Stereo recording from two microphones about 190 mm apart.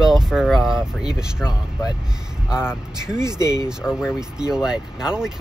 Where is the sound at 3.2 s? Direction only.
20° right (ahead or behind).